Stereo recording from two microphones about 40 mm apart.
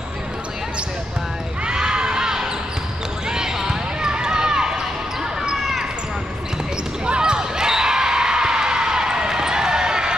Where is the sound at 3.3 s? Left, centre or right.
Centre.